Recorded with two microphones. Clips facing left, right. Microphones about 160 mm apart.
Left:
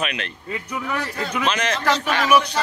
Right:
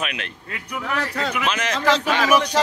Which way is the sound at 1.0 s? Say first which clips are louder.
Right 2 dB; 90° right.